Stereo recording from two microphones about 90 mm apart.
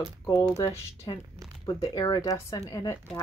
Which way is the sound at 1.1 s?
50° left (ahead or behind).